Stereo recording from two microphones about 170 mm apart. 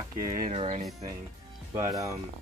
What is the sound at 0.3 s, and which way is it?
Speech, 55° right (ahead or behind).